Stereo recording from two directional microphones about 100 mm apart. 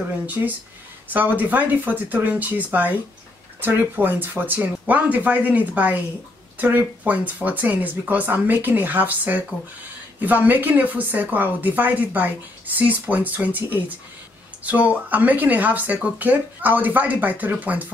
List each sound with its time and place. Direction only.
1.0 s speech: 15° right (ahead or behind)